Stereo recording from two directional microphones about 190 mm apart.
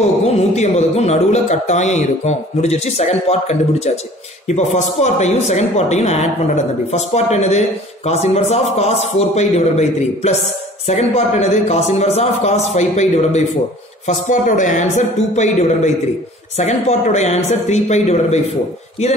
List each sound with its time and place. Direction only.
0.2 s a woman's voice: 35° left (ahead or behind)